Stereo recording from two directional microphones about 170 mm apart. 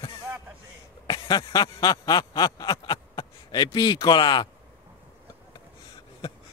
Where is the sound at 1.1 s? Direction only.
25° left (ahead or behind).